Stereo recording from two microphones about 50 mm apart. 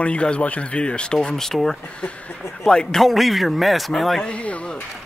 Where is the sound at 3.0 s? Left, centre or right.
Centre.